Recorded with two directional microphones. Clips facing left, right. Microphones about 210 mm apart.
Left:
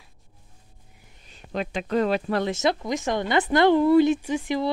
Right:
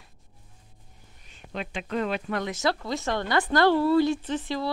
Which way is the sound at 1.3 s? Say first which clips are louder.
Left 5 dB; 40° left (ahead or behind).